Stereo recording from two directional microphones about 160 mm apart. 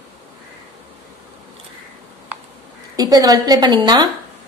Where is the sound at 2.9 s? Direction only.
25° right (ahead or behind).